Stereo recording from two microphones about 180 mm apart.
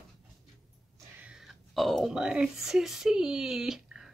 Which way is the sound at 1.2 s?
5° right (ahead or behind).